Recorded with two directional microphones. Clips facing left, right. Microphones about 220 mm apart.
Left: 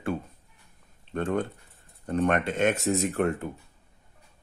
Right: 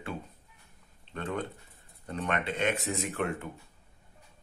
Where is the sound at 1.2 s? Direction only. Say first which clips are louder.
Left 7 dB; 50° left (ahead or behind).